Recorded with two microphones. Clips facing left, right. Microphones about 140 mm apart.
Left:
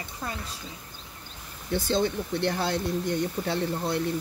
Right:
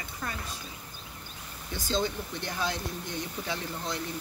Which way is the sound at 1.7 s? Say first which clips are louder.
Left 5 dB; 60° left (ahead or behind).